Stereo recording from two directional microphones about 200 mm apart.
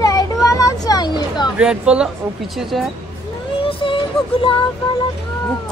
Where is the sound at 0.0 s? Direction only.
15° left (ahead or behind).